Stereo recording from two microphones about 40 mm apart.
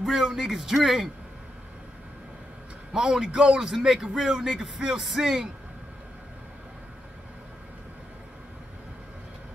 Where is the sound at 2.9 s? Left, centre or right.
Centre.